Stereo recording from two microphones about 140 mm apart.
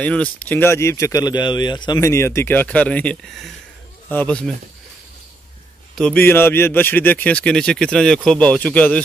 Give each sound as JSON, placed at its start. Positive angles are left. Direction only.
{"t": 0.0, "sound": "a man's voice", "side_deg": 10}
{"t": 5.9, "sound": "a man's voice", "side_deg": 10}